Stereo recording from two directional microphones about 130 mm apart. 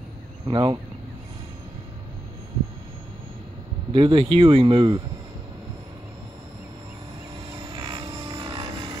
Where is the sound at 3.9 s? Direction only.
40° right (ahead or behind).